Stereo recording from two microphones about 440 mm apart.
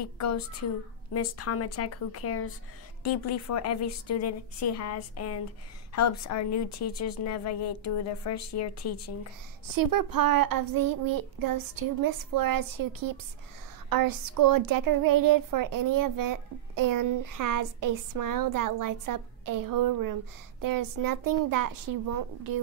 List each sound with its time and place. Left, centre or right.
0.0 s a woman's voice: left
9.8 s speech: right